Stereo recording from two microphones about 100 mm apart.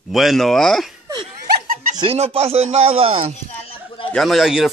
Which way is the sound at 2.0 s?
80° right.